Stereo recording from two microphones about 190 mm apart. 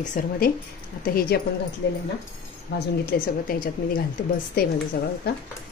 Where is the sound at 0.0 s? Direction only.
40° left (ahead or behind).